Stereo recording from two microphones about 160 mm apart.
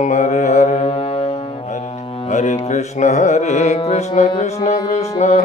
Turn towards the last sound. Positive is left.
turn(degrees=45)  # may be behind; listen again after turning